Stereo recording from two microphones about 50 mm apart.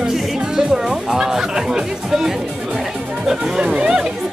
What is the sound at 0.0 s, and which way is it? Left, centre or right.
Music, centre.